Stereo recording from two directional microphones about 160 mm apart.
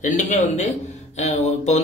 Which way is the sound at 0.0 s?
50° left (ahead or behind).